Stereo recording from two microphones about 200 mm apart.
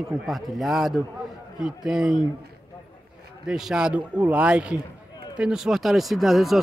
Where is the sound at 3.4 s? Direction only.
5° right (ahead or behind).